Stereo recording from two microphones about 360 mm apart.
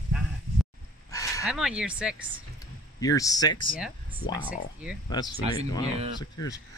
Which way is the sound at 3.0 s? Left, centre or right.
Centre.